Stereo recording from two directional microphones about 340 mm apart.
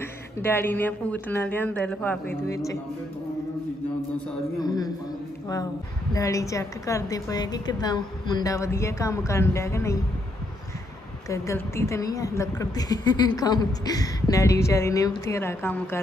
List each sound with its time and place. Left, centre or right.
0.4 s speech: centre
4.6 s a woman's voice: centre
6.1 s a woman's voice: centre
11.2 s a woman's voice: centre